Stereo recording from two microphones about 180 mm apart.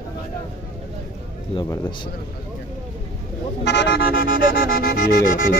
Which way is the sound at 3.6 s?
80° left.